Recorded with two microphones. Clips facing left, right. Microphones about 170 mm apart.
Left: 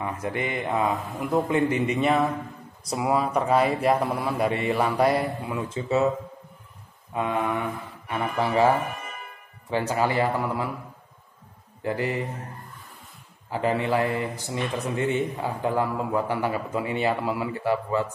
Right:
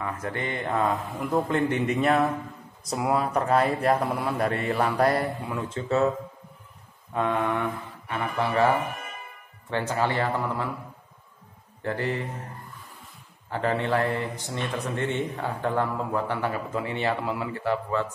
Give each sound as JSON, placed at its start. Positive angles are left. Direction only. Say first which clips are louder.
{"t": 0.0, "sound": "speech", "louder": "left 2 dB", "side_deg": 15}
{"t": 7.2, "sound": "a man's voice", "louder": "right 1 dB", "side_deg": 5}
{"t": 9.7, "sound": "a man's voice", "louder": "left 2 dB", "side_deg": 10}
{"t": 11.8, "sound": "a man's voice", "louder": "left 1 dB", "side_deg": 10}
{"t": 13.5, "sound": "a man's voice", "louder": "left 1 dB", "side_deg": 10}